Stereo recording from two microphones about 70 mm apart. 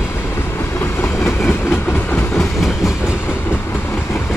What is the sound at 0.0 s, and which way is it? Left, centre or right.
Train, left.